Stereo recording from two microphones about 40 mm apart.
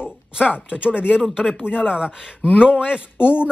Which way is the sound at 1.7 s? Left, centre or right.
Centre.